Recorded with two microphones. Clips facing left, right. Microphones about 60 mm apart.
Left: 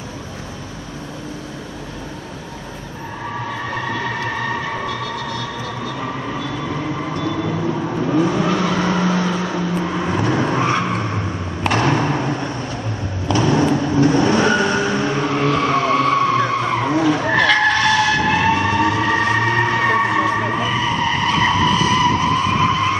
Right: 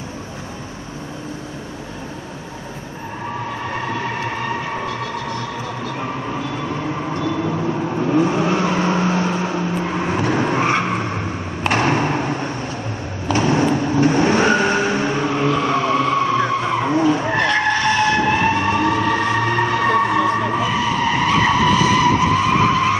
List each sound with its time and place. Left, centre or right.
7.4 s vehicle: centre
8.1 s vehicle: right
9.8 s vehicle: right
11.6 s thump: right
13.3 s vehicle: right
15.7 s vehicle: centre
17.3 s vehicle: left
19.0 s music: left
19.5 s music: left
20.5 s skidding: centre